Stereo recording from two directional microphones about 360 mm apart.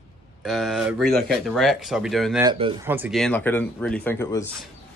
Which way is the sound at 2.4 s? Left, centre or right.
Centre.